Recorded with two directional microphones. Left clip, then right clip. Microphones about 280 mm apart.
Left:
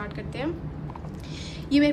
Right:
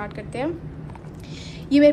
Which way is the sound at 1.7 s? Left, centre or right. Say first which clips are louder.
Right 5 dB; centre.